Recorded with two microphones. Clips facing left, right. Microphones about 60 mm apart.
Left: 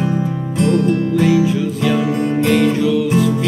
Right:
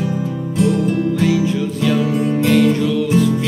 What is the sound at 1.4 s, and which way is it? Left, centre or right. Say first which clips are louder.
Music: left 1 dB; centre.